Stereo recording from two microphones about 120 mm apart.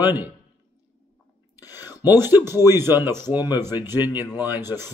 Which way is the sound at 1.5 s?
30° left (ahead or behind).